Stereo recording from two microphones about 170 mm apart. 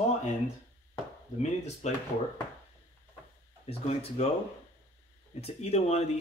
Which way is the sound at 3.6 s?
40° left (ahead or behind).